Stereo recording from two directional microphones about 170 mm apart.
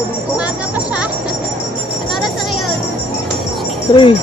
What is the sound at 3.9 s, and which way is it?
Speech, 30° left (ahead or behind).